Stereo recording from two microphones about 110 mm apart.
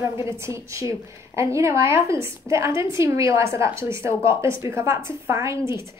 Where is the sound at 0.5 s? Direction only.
25° right (ahead or behind).